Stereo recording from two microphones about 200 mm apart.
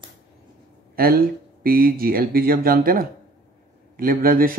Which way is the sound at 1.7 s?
50° right (ahead or behind).